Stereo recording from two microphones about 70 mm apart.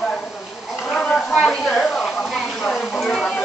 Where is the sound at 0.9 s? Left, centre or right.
Centre.